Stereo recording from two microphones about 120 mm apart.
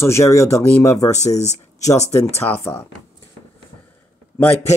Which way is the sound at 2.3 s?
20° left (ahead or behind).